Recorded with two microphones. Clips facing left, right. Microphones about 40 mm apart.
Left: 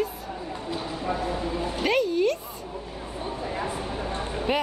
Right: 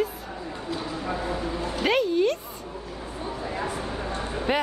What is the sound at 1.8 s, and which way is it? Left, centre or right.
Music, centre.